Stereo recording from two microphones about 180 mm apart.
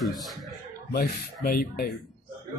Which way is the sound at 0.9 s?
55° left (ahead or behind).